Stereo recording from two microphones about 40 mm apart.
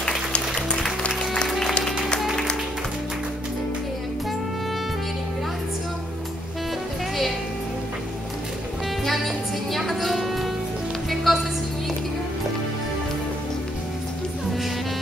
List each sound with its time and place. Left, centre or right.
1.6 s music: centre
9.0 s music: centre